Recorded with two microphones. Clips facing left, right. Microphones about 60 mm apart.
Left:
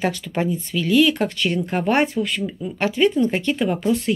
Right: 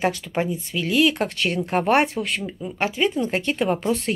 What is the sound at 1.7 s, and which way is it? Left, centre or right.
Speech, right.